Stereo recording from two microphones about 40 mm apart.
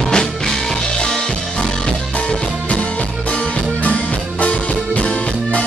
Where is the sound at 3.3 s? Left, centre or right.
Left.